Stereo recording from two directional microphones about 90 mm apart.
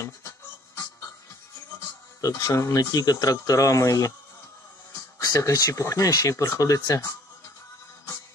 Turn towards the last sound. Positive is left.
turn(degrees=40)  # may be behind; listen again after turning